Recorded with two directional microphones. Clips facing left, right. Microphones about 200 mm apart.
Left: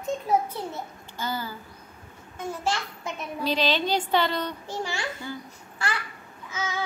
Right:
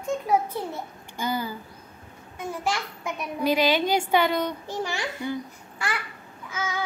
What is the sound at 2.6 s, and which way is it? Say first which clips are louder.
A child's voice: right 1 dB; 15° right (ahead or behind).